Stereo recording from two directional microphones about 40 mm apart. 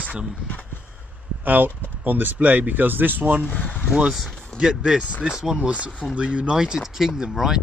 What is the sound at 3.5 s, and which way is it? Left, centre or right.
Speech, left.